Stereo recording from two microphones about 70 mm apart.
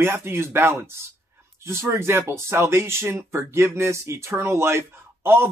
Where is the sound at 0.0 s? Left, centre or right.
Right.